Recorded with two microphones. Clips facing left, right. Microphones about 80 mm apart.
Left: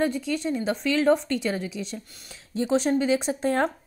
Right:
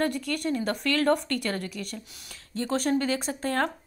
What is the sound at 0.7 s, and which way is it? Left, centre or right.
Speech, centre.